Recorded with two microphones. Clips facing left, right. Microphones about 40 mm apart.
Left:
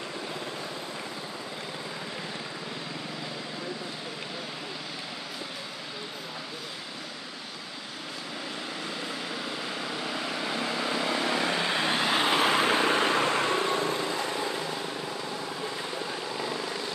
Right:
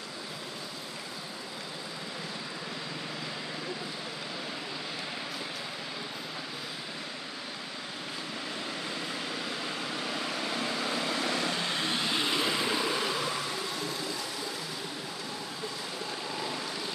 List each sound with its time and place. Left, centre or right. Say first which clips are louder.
9.3 s vehicle: left 1 dB; centre; by 14.6 s left